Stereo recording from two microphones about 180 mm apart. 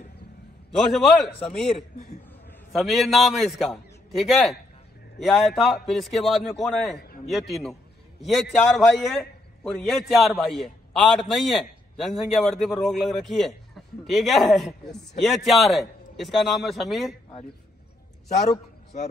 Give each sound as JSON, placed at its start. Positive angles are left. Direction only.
{"t": 0.7, "sound": "a man's voice", "side_deg": 0}
{"t": 2.7, "sound": "a man's voice", "side_deg": 0}
{"t": 7.0, "sound": "a sound", "side_deg": 55}
{"t": 7.2, "sound": "a man's voice", "side_deg": 0}